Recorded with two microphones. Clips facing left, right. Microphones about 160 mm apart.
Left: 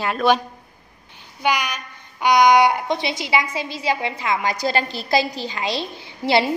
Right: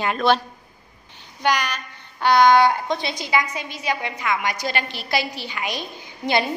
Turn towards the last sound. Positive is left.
turn(degrees=25)  # may be behind; listen again after turning